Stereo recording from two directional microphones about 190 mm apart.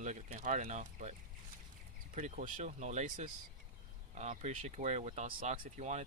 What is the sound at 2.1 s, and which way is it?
Speech, 40° right (ahead or behind).